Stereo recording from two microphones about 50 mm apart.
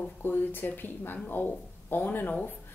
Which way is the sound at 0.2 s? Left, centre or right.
Left.